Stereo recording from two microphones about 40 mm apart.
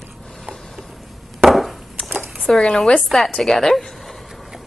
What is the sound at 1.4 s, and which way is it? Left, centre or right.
Chop, centre.